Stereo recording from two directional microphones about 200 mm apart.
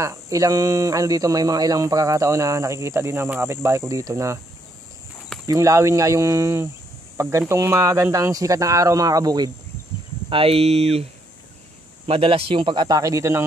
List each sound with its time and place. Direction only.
0.0 s speech: 15° right (ahead or behind)
5.5 s speech: 15° right (ahead or behind)
12.1 s speech: 30° right (ahead or behind)